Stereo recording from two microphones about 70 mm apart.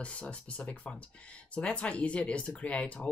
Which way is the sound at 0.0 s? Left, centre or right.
Centre.